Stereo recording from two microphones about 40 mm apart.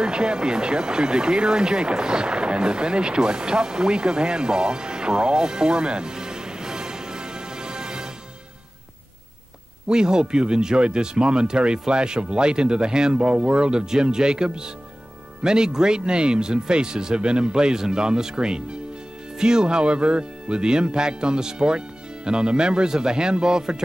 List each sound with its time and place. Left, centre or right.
0.0 s speech: right
9.8 s speech: centre